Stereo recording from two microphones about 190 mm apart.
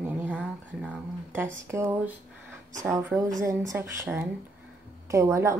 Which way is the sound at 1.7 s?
10° right (ahead or behind).